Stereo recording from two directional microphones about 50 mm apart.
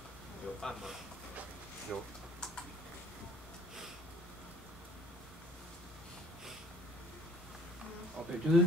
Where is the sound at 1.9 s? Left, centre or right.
Centre.